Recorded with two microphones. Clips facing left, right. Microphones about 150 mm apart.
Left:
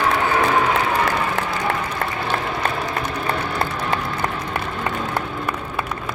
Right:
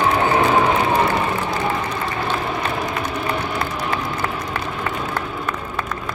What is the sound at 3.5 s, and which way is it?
Run, 20° left (ahead or behind).